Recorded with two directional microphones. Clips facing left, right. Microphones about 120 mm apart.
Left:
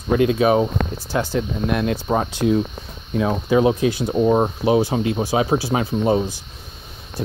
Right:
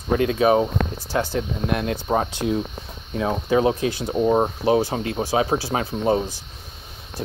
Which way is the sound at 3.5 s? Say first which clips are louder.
Left 3 dB; 20° left (ahead or behind).